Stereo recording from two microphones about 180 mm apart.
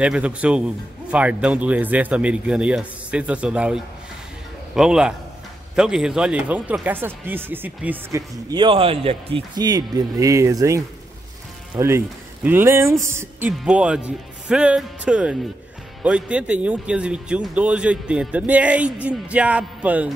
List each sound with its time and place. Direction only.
0.0 s speech: 5° right (ahead or behind)
8.5 s speech: 25° right (ahead or behind); by 20.1 s 10° right (ahead or behind)